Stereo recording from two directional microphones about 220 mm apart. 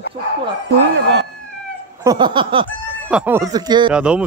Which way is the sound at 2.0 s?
20° right (ahead or behind).